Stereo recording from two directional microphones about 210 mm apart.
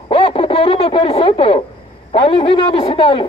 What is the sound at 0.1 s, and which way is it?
Speech, 25° left (ahead or behind).